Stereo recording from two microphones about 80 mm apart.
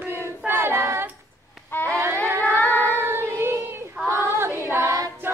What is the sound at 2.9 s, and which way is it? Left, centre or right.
Child singing, right.